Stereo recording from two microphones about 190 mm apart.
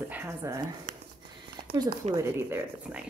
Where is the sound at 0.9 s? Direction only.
45° right (ahead or behind).